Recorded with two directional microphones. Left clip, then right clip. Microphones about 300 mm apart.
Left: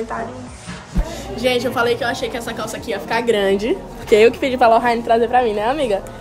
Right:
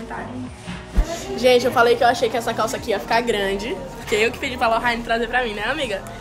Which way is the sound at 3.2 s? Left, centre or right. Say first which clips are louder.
Left 5 dB; left.